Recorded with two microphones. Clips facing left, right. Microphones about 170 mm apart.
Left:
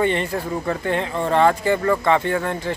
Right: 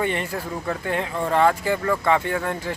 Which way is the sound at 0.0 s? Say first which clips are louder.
Left 4 dB; 5° right (ahead or behind).